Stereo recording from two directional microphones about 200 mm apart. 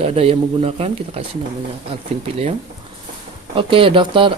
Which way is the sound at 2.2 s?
30° right (ahead or behind).